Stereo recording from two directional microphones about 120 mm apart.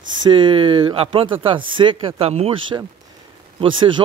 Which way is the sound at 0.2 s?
40° right (ahead or behind).